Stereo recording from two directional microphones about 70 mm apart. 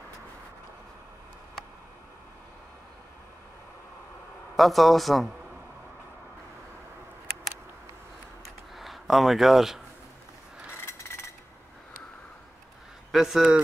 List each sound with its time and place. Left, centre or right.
4.6 s a man's voice: centre
8.7 s speech: centre
11.1 s a sound: left
13.1 s a man's voice: centre